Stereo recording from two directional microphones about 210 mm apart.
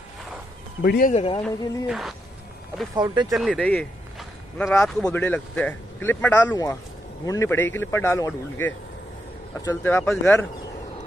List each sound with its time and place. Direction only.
0.8 s speech: 50° left (ahead or behind)
1.1 s a man's voice: 30° left (ahead or behind)
1.4 s speech: centre (ahead or behind)
2.9 s speech: 20° right (ahead or behind)
3.3 s speech: centre (ahead or behind)